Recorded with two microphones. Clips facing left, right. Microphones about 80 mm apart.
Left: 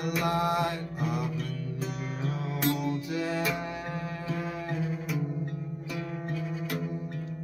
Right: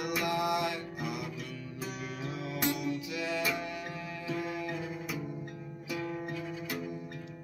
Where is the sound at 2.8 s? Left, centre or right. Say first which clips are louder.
Left 4 dB; left.